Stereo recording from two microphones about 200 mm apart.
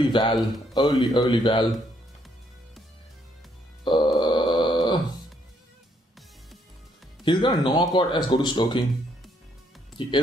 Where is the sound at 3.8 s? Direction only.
25° left (ahead or behind).